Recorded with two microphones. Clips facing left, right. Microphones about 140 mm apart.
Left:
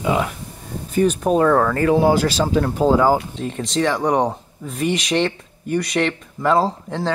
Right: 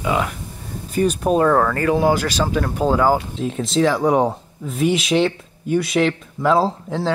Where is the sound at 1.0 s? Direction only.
10° right (ahead or behind).